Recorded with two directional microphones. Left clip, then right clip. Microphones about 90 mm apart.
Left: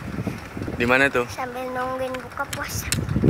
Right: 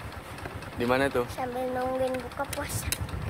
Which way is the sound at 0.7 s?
50° left (ahead or behind).